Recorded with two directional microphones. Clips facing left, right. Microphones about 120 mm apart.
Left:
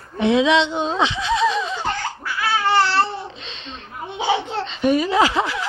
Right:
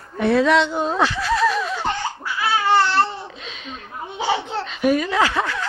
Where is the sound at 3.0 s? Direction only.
5° right (ahead or behind).